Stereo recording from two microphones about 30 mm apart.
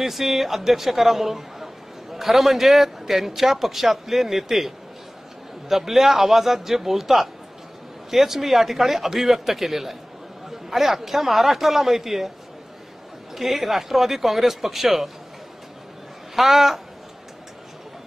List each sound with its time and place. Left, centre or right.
0.0 s a man's voice: centre
13.3 s a man's voice: centre
16.3 s a man's voice: centre